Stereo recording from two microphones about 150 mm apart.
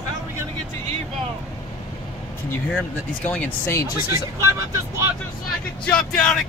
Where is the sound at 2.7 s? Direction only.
10° left (ahead or behind).